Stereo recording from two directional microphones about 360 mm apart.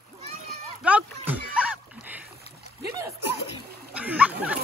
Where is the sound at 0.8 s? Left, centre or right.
Centre.